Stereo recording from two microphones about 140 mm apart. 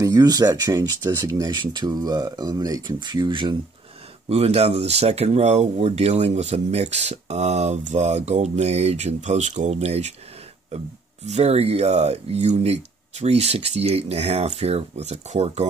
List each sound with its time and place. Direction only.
0.0 s speech: 25° right (ahead or behind)
4.3 s speech: 50° right (ahead or behind)
11.2 s speech: 50° right (ahead or behind)